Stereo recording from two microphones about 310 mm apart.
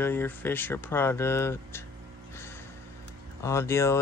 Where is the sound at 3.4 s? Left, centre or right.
Centre.